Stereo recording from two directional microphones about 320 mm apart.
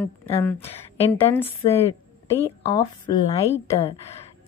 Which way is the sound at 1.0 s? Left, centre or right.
Centre.